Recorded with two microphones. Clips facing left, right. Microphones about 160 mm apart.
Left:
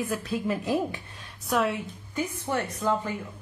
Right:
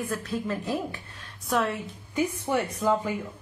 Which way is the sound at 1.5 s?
Centre (ahead or behind).